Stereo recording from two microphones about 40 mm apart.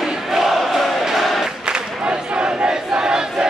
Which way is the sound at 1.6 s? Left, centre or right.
Right.